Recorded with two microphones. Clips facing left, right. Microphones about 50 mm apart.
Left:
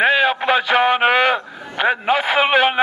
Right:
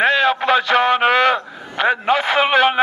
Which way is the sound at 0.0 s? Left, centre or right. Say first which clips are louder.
Even; centre.